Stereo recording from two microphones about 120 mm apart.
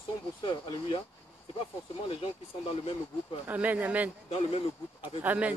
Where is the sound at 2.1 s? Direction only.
50° left (ahead or behind).